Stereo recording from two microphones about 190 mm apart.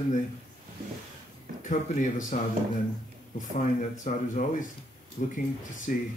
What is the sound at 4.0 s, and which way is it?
A man's voice, 40° left (ahead or behind).